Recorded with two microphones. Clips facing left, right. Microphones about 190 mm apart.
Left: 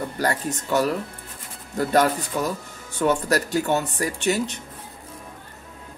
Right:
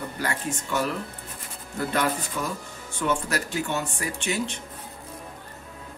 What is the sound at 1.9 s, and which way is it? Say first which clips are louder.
Speech: left 6 dB; 40° left (ahead or behind).